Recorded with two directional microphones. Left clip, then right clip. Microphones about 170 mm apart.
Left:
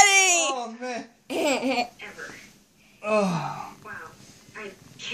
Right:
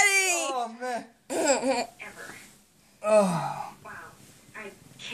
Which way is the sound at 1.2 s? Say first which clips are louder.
Even; 60° right (ahead or behind).